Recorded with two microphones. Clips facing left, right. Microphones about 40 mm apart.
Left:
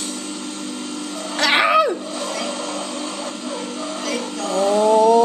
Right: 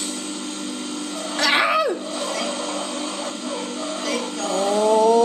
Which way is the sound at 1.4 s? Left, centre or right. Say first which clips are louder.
Left 3 dB; left.